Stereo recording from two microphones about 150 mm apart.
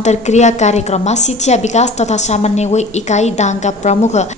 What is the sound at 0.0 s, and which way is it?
A woman's voice, 50° left (ahead or behind).